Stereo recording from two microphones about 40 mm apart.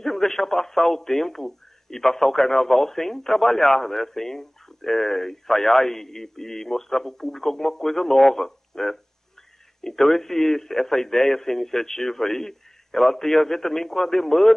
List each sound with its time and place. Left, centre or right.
0.0 s speech: centre